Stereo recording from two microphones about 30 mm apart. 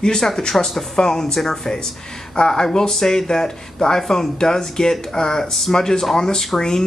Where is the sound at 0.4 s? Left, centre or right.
Left.